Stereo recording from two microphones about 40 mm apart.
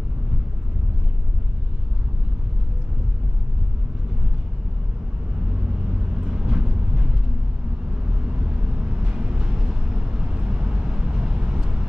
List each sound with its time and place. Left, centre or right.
6.2 s vehicle: centre
8.5 s vehicle: right